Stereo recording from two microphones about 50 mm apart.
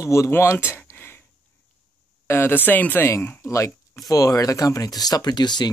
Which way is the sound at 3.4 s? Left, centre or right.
Left.